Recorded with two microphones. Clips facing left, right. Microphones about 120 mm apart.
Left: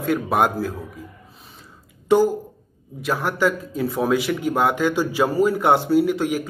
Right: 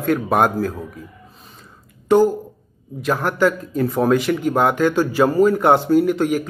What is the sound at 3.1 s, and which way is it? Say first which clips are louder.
Speech: right 3 dB; 45° right (ahead or behind).